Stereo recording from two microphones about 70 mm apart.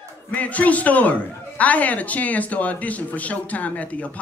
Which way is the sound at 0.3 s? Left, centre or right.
Left.